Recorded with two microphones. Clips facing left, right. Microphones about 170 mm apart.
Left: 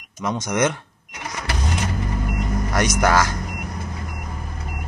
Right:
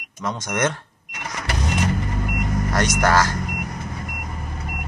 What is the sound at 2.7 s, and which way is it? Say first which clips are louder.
Speech: left 1 dB; 15° left (ahead or behind).